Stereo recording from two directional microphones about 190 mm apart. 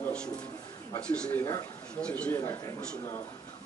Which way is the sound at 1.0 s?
5° left (ahead or behind).